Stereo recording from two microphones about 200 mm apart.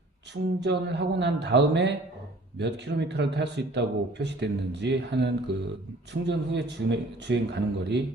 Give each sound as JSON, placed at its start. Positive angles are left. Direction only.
{"t": 0.3, "sound": "speech", "side_deg": -60}